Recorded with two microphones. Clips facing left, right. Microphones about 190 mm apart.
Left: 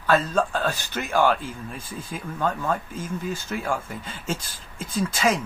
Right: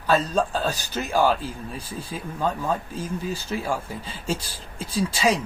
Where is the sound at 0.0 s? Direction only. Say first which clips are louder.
Even; 15° right (ahead or behind).